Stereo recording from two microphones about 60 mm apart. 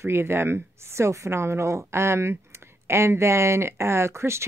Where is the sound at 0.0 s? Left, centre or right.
Right.